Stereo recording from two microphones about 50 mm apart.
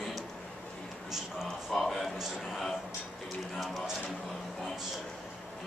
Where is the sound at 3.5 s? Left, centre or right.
Centre.